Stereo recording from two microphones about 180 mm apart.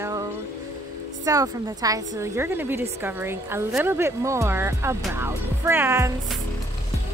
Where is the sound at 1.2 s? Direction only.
20° right (ahead or behind).